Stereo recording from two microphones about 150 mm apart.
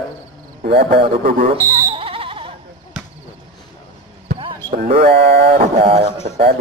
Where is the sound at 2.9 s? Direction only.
5° right (ahead or behind).